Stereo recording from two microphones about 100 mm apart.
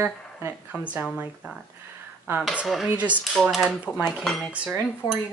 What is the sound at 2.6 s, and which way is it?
Dishes, centre (ahead or behind).